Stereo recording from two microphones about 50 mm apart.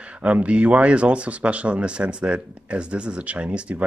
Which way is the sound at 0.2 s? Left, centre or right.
Right.